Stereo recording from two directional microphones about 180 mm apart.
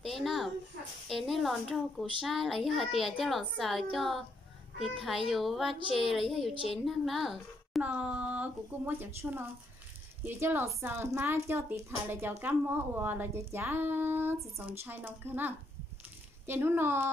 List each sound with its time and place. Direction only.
0.0 s a sound: centre (ahead or behind)
1.0 s a child's voice: centre (ahead or behind)
5.8 s a woman's voice: 30° right (ahead or behind)
6.0 s a child's voice: centre (ahead or behind)